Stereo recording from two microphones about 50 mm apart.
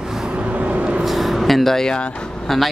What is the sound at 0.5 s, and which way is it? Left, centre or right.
Vehicle, right.